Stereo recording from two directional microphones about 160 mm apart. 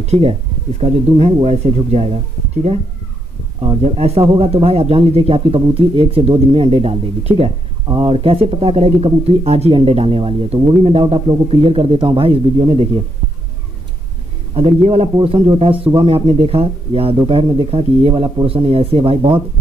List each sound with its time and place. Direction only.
0.0 s speech: 40° right (ahead or behind)
3.6 s speech: 40° right (ahead or behind)
14.5 s speech: 35° right (ahead or behind)